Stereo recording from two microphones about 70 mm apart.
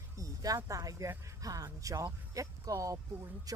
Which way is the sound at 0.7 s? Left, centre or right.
Right.